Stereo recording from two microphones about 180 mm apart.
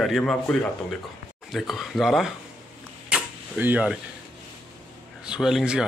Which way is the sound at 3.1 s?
10° right (ahead or behind).